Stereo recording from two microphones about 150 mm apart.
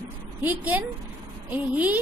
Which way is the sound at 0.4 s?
10° right (ahead or behind).